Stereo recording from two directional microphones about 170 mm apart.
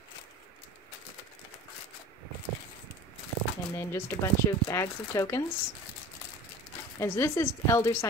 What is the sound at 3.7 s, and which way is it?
Speech, 15° left (ahead or behind).